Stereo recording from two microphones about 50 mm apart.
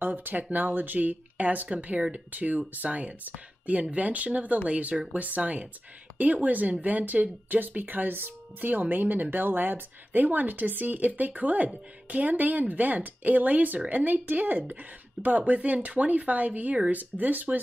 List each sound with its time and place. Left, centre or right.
0.0 s speech: right